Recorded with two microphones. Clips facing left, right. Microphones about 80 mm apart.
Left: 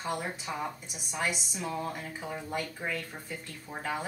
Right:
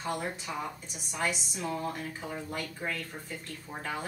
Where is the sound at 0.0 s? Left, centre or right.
Centre.